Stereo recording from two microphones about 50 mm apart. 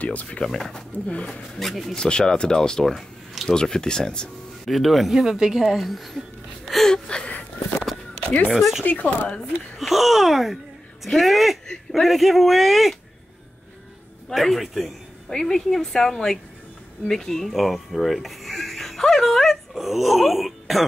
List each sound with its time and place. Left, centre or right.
0.0 s speech: left
0.4 s a woman's voice: centre
1.6 s speech: centre
2.0 s a woman's voice: centre
4.6 s speech: centre
5.8 s speech: centre
6.9 s a sound: centre
8.5 s speech: centre
8.8 s speech: left
9.8 s speech: centre
14.3 s speech: centre
15.2 s a woman's voice: centre